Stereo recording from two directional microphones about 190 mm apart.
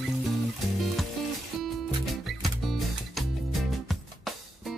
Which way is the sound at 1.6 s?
Centre (ahead or behind).